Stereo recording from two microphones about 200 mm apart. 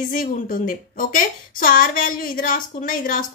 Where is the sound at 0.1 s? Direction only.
45° left (ahead or behind).